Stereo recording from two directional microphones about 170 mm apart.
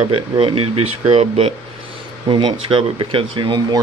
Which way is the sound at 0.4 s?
30° right (ahead or behind).